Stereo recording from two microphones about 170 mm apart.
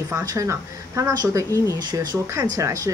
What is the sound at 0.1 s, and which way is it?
Speech, 20° right (ahead or behind).